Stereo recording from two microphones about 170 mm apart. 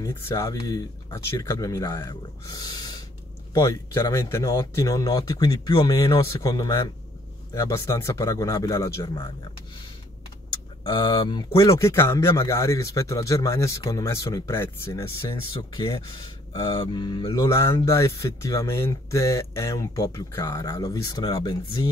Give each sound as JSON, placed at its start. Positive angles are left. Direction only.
{"t": 0.0, "sound": "speech", "side_deg": 15}
{"t": 10.8, "sound": "speech", "side_deg": 25}
{"t": 17.6, "sound": "speech", "side_deg": 15}